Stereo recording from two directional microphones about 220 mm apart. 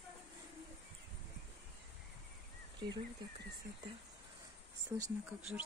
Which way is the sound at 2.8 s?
20° right (ahead or behind).